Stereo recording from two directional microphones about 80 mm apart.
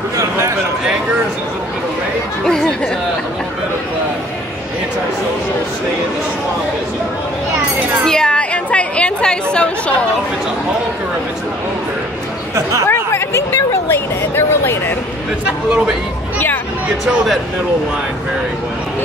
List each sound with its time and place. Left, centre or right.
2.4 s speech: centre
8.0 s chatter: centre
12.8 s a sound: left